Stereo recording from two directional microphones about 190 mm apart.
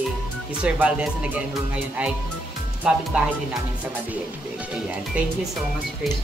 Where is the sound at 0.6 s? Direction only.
5° right (ahead or behind).